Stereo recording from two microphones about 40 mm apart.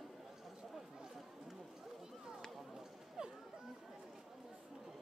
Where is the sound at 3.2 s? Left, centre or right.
Centre.